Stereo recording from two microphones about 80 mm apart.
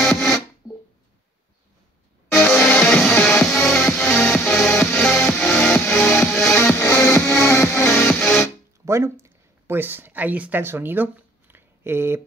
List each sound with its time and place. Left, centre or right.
0.0 s music: centre
2.5 s music: centre
6.6 s music: left
8.1 s music: centre
8.8 s speech: right